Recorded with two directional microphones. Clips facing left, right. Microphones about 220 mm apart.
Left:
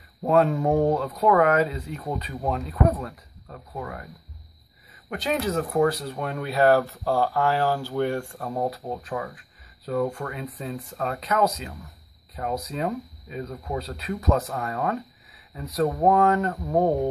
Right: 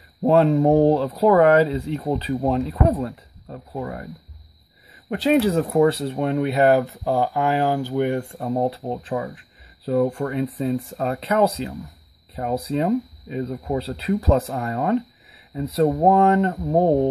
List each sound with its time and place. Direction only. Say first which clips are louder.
0.2 s speech: right 5 dB; 30° right (ahead or behind)
5.1 s speech: right 8 dB; 30° right (ahead or behind)